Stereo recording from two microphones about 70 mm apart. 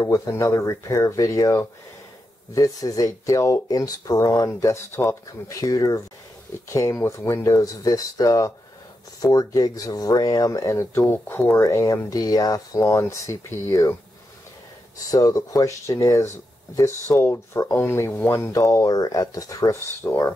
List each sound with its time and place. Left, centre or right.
0.0 s speech: left
3.6 s speech: left
4.5 s speech: left
10.7 s speech: left
11.6 s speech: left
12.1 s speech: left
12.7 s speech: left
15.0 s speech: left
20.0 s speech: left